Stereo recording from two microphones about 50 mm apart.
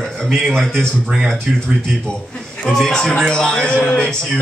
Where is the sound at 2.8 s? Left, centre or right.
Centre.